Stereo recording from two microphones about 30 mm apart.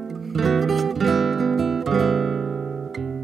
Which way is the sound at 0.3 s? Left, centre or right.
Centre.